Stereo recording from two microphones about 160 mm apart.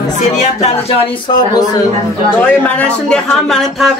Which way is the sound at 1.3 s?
25° left (ahead or behind).